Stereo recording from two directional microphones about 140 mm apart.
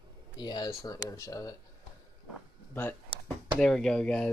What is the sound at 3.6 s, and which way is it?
Speech, 5° left (ahead or behind).